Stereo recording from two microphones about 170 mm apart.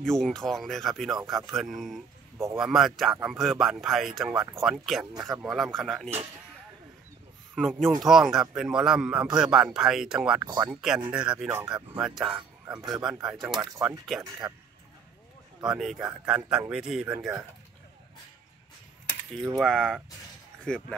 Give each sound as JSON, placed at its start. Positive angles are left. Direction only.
{"t": 0.0, "sound": "a man's voice", "side_deg": 5}
{"t": 7.5, "sound": "a man's voice", "side_deg": 5}
{"t": 14.4, "sound": "speech", "side_deg": -20}
{"t": 15.6, "sound": "a man's voice", "side_deg": 0}
{"t": 19.4, "sound": "a man's voice", "side_deg": 0}